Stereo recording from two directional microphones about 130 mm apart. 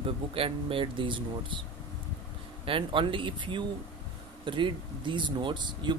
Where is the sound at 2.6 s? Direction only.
40° right (ahead or behind).